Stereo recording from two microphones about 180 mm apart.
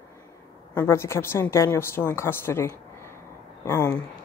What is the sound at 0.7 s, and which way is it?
Speech, 15° left (ahead or behind).